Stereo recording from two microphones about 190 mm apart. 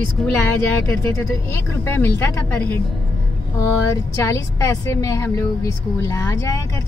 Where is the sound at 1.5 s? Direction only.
15° left (ahead or behind).